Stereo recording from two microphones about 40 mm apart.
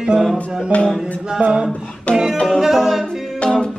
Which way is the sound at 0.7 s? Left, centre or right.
Left.